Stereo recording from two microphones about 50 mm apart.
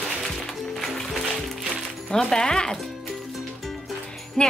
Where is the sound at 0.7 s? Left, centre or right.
Centre.